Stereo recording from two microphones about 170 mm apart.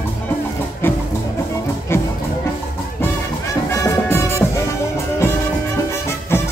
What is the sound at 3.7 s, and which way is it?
Music, 15° left (ahead or behind).